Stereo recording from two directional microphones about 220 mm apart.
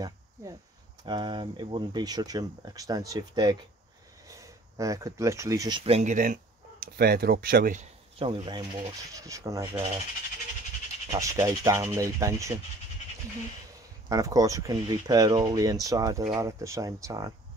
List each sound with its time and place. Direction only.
0.0 s speech: 15° right (ahead or behind); by 7.8 s 40° right (ahead or behind)
8.2 s speech: 20° right (ahead or behind)
11.1 s speech: 15° right (ahead or behind)
14.0 s speech: 15° right (ahead or behind)